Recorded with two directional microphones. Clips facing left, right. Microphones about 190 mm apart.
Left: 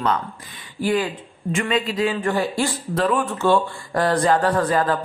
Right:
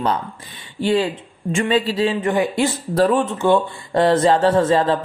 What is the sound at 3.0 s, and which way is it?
Speech, 35° right (ahead or behind).